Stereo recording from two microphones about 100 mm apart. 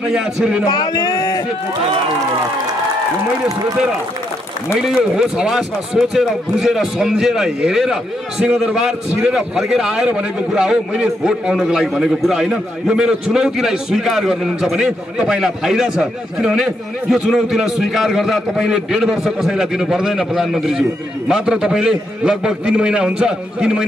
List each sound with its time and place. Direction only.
0.1 s a man's voice: 10° right (ahead or behind)
0.7 s speech: 40° left (ahead or behind)
4.7 s a man's voice: 5° right (ahead or behind)